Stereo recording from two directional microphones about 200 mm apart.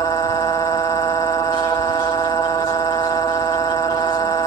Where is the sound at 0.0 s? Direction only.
20° left (ahead or behind).